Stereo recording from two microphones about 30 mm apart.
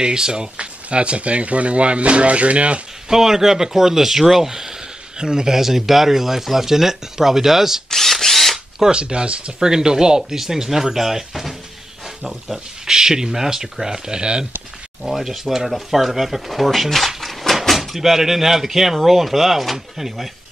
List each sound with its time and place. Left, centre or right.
0.0 s speech: right
0.8 s speech: right
3.1 s speech: centre
5.6 s speech: centre
7.9 s drill: centre
8.9 s speech: right
9.7 s speech: right
10.3 s speech: centre
12.8 s speech: centre
15.0 s speech: centre
17.2 s a sound: centre
17.6 s speech: centre